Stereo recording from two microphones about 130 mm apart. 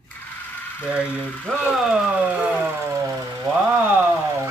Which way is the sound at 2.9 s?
25° right (ahead or behind).